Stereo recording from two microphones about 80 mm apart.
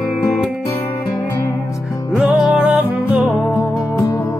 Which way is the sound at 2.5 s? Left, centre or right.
Centre.